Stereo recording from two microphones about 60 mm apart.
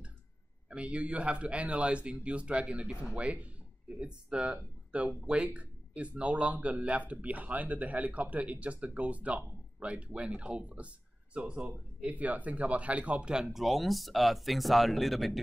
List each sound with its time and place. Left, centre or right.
0.7 s speech: centre